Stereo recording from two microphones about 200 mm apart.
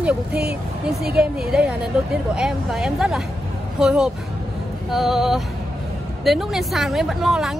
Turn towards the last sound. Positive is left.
turn(degrees=0)  # may be behind; listen again after turning